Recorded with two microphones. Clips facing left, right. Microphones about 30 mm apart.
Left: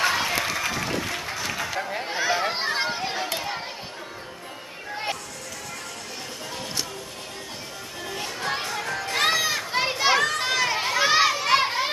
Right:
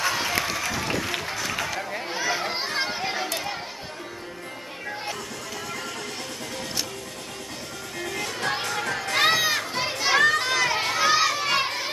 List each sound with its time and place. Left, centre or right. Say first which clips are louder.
0.2 s applause: left 1 dB; centre
1.2 s music: right 1 dB; centre
1.7 s a sound: left 1 dB; centre
3.3 s children playing: even; centre
8.4 s a sound: right 1 dB; centre
9.7 s children playing: left 3 dB; centre
10.1 s children playing: right 3 dB; centre
10.4 s a sound: even; centre
11.0 s children playing: left 2 dB; centre
11.4 s crowd: left 3 dB; centre